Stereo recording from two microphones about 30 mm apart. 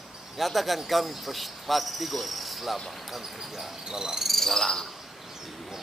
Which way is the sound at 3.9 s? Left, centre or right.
Right.